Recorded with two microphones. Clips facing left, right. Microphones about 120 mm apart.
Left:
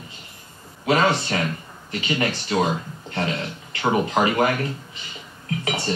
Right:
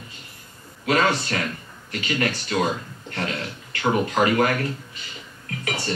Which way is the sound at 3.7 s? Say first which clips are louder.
Left 1 dB; 25° left (ahead or behind).